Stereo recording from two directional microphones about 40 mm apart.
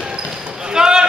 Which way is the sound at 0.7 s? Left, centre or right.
Centre.